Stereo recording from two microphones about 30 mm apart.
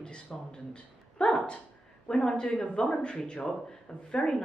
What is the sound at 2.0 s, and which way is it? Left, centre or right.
A woman's voice, left.